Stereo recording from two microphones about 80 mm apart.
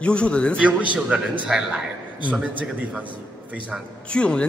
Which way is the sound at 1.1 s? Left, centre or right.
Centre.